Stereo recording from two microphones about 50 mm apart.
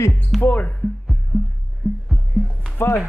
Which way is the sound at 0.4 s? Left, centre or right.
Left.